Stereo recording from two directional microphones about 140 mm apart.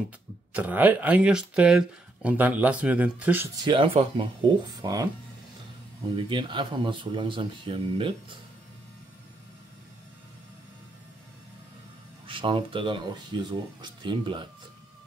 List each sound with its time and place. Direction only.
0.5 s speech: 10° right (ahead or behind)
3.6 s speech: 40° right (ahead or behind)
12.3 s speech: 40° right (ahead or behind)